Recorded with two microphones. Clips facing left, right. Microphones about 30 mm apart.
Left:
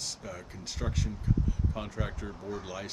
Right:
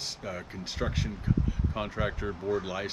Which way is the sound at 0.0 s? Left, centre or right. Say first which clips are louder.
Right 3 dB; right.